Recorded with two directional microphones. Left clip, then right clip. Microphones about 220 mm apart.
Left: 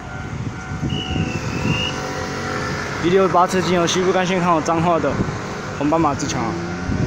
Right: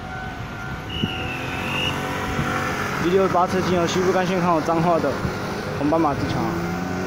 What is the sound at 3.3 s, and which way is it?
Speech, 10° left (ahead or behind).